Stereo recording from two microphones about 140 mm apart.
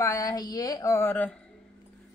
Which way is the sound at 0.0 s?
25° left (ahead or behind).